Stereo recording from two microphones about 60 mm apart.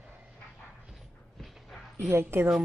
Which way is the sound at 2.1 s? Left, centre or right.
Right.